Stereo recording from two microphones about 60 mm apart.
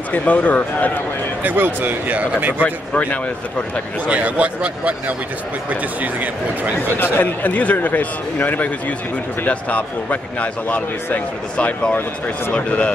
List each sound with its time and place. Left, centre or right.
0.1 s speech: left
1.4 s speech: right
2.6 s speech: left
4.1 s speech: right
7.2 s speech: left